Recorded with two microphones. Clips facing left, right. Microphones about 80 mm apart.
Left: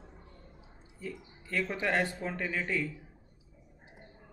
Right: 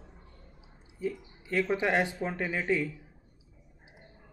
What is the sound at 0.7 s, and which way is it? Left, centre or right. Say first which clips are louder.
Speech: right 8 dB; centre.